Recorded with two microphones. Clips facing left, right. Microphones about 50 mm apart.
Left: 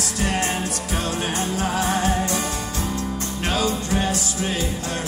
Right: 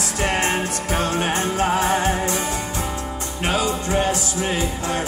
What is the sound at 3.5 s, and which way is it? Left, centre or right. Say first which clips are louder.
Music: right 1 dB; right.